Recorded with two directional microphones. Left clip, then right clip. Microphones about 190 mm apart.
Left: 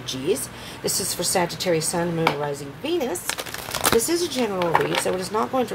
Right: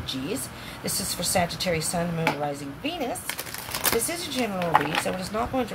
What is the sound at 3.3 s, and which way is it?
Crumpling, 20° left (ahead or behind).